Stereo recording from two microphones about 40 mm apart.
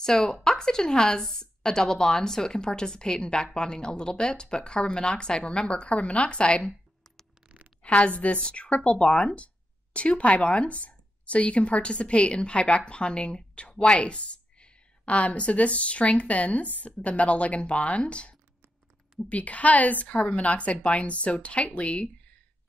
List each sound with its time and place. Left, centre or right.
0.0 s a woman's voice: centre
7.8 s a woman's voice: left